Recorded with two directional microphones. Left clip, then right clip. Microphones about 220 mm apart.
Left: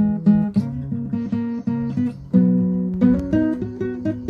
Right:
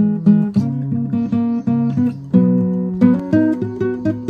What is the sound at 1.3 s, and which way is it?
Music, 20° right (ahead or behind).